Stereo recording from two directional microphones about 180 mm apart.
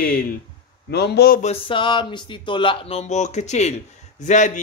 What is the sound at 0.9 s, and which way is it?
Speech, 65° left (ahead or behind).